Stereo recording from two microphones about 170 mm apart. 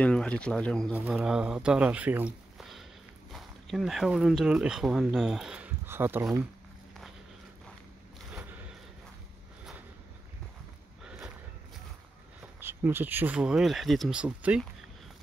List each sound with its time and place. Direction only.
0.0 s speech: 5° left (ahead or behind)
0.9 s speech: 5° right (ahead or behind)
8.3 s a sound: 5° right (ahead or behind)
11.1 s walk: 5° right (ahead or behind)
12.5 s speech: 15° right (ahead or behind)